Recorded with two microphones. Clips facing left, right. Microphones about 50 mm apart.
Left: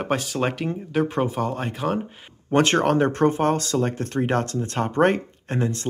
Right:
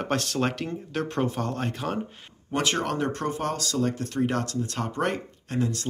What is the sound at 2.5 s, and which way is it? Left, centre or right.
Speech, left.